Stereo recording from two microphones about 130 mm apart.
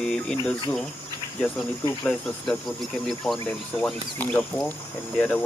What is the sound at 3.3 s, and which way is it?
Speech, centre (ahead or behind).